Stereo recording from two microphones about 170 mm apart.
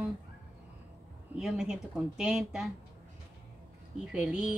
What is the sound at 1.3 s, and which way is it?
Speech, 5° right (ahead or behind).